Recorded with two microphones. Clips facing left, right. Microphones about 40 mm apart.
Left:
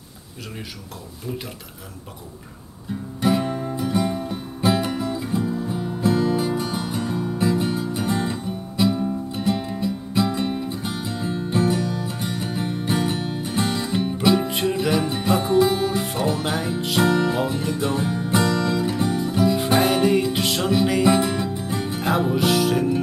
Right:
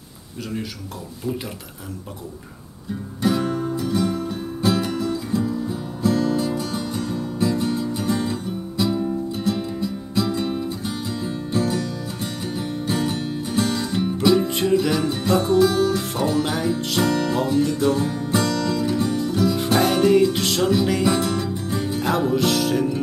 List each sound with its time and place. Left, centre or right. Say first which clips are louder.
3.2 s music: even; centre